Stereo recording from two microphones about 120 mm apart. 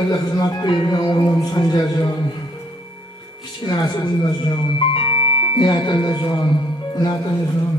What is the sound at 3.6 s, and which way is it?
Speech, 35° left (ahead or behind).